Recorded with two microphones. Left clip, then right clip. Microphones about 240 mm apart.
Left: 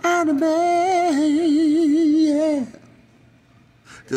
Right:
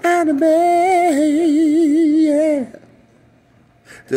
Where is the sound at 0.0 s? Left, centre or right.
Left.